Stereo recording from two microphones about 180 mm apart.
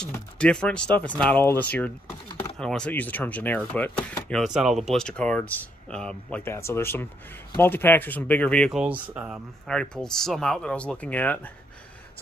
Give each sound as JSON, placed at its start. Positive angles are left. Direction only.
{"t": 0.1, "sound": "speech", "side_deg": 5}
{"t": 4.4, "sound": "speech", "side_deg": 0}
{"t": 9.7, "sound": "speech", "side_deg": 5}